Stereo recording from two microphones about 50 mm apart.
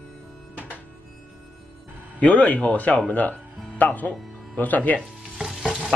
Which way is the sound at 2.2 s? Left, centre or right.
Left.